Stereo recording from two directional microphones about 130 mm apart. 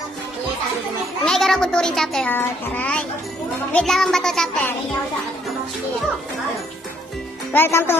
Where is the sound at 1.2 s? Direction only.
5° left (ahead or behind).